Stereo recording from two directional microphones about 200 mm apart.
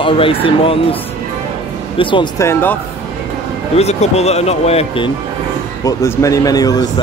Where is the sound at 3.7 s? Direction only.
30° left (ahead or behind).